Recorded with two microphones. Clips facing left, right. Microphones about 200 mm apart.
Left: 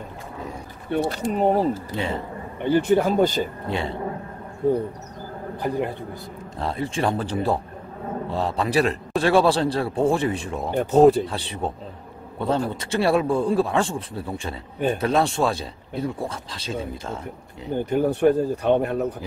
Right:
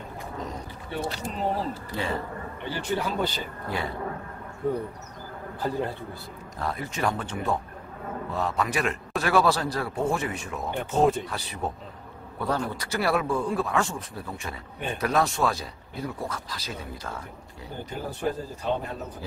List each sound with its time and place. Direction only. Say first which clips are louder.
0.9 s speech: left 9 dB; 55° left (ahead or behind)
1.9 s a man's voice: left 3 dB; 20° left (ahead or behind)
2.6 s speech: left 11 dB; 50° left (ahead or behind)
3.6 s a man's voice: left 4 dB; 25° left (ahead or behind)
5.6 s a man's voice: left 3 dB; 15° left (ahead or behind)
6.6 s a man's voice: left 4 dB; 30° left (ahead or behind)
17.8 s speech: left 12 dB; 60° left (ahead or behind)